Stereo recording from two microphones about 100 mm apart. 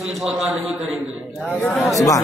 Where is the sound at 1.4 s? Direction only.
15° left (ahead or behind).